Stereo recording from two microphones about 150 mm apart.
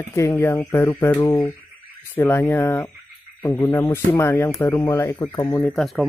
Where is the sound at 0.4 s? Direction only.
15° left (ahead or behind).